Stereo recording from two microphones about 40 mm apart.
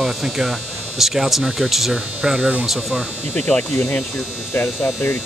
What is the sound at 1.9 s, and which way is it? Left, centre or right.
Speech, centre.